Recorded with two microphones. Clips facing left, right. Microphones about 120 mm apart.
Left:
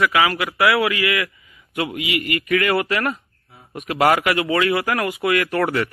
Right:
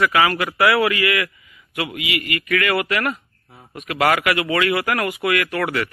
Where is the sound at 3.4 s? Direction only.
45° right (ahead or behind).